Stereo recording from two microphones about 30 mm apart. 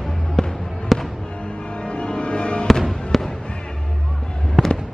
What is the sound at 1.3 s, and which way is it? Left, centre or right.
Music, left.